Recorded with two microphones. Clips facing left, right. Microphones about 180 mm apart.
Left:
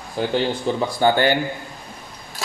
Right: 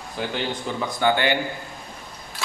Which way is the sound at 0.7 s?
35° left (ahead or behind).